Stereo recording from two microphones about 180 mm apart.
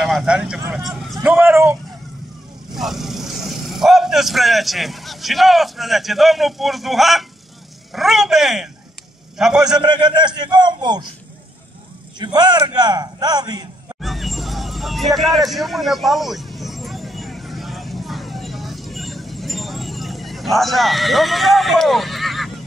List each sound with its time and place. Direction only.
0.0 s speech: centre (ahead or behind)
2.7 s speech: centre (ahead or behind)
9.8 s a man's voice: 25° right (ahead or behind)
12.2 s a man's voice: 20° right (ahead or behind)
14.0 s hubbub: centre (ahead or behind)